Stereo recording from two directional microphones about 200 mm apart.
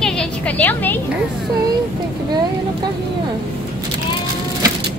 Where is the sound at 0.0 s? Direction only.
5° left (ahead or behind).